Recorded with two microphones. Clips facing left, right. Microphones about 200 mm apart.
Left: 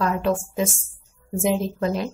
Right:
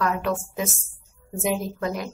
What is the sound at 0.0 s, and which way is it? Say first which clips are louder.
A woman's voice: left 3 dB; 30° left (ahead or behind).